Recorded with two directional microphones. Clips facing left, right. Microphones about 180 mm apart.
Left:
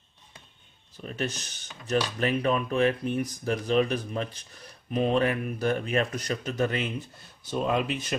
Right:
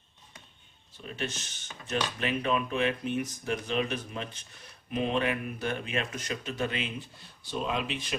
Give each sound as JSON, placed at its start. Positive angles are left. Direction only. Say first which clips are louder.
{"t": 0.9, "sound": "speech", "louder": "left 4 dB", "side_deg": 40}